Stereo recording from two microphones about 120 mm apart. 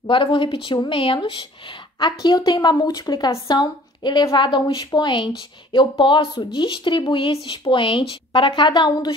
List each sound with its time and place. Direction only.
0.0 s speech: 45° left (ahead or behind)